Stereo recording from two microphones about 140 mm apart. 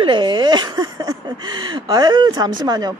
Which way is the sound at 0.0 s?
35° right (ahead or behind).